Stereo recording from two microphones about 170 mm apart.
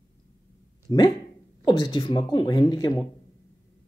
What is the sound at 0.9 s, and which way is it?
Speech, 25° left (ahead or behind).